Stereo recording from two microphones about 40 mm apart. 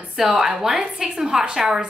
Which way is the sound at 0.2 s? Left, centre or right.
Centre.